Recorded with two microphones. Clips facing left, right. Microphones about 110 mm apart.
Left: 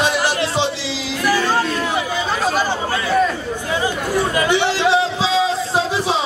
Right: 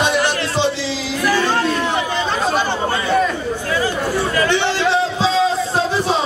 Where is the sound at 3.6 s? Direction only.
20° left (ahead or behind).